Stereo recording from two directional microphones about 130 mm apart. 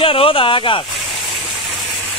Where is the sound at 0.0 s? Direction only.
45° left (ahead or behind).